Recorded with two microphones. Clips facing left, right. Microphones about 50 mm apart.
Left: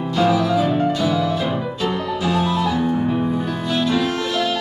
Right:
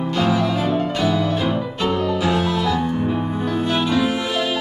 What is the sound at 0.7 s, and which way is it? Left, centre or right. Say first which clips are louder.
Music: left 2 dB; centre.